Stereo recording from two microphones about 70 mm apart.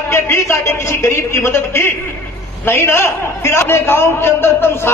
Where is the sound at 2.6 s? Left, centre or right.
Left.